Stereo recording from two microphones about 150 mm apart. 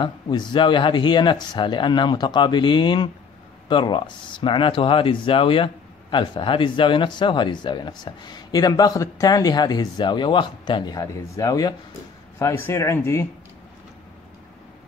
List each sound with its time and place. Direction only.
0.0 s speech: 30° left (ahead or behind)